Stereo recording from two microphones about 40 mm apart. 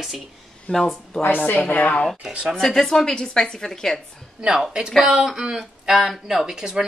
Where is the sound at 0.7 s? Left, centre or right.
Centre.